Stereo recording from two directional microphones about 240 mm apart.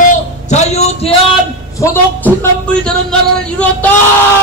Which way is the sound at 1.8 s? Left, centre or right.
Centre.